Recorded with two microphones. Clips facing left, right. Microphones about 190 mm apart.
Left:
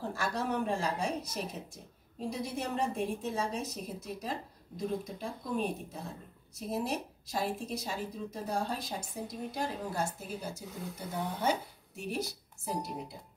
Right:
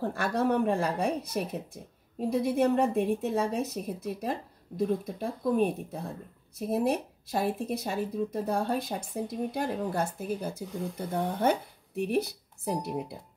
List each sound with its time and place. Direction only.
0.1 s speech: 60° right (ahead or behind)